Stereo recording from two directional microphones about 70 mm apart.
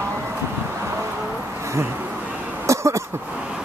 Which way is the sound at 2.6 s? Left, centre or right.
Right.